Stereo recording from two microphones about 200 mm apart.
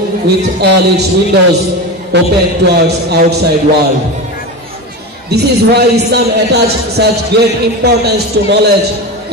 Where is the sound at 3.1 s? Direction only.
55° right (ahead or behind).